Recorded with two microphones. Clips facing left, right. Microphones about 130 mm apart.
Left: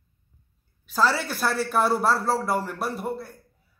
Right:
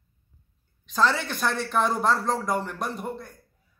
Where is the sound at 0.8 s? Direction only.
5° left (ahead or behind).